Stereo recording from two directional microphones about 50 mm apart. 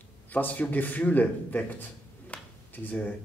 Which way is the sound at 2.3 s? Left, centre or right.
Left.